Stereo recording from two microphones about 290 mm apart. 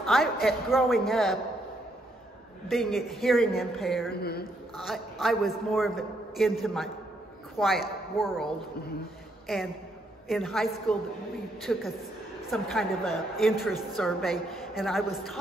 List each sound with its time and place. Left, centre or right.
0.0 s a woman's voice: centre
2.7 s a woman's voice: centre
4.1 s speech: left
4.7 s a woman's voice: centre